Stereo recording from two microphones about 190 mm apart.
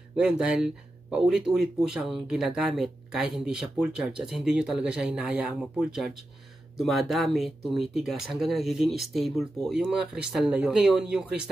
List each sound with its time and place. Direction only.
0.1 s speech: 5° right (ahead or behind)